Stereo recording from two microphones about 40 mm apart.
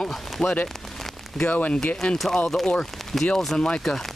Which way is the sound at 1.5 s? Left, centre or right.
Left.